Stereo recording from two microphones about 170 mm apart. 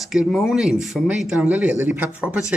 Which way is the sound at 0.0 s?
Centre (ahead or behind).